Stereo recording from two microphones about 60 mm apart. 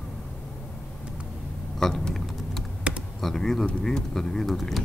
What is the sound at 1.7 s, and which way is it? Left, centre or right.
Speech, centre.